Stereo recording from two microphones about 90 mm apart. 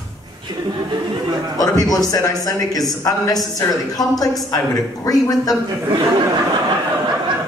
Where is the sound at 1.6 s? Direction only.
45° left (ahead or behind).